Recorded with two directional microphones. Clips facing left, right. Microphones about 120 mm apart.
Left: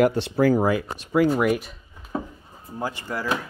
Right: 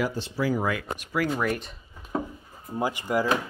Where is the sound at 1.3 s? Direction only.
10° left (ahead or behind).